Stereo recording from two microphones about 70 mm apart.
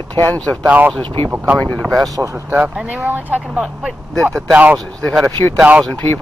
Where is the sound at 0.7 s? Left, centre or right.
Right.